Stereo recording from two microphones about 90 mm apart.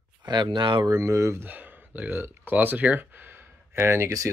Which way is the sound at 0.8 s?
35° right (ahead or behind).